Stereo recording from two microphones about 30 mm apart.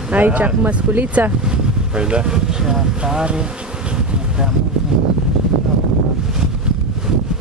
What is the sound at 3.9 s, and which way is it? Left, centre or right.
Bee, right.